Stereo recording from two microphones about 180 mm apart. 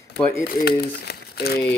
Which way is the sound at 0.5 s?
60° left (ahead or behind).